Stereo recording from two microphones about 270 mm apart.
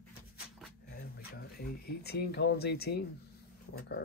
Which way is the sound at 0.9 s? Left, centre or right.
Left.